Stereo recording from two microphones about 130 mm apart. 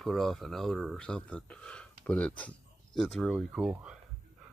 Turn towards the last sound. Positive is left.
turn(degrees=-5)  # may be behind; listen again after turning